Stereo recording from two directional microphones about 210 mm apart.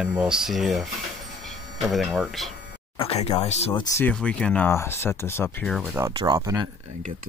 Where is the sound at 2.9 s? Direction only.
30° left (ahead or behind).